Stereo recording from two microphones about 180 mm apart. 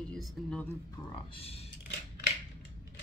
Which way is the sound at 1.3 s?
35° left (ahead or behind).